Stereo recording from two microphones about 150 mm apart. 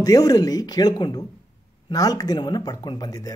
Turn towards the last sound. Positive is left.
turn(degrees=25)  # may be behind; listen again after turning